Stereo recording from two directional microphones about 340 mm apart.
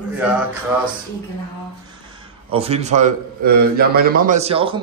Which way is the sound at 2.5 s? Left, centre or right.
Centre.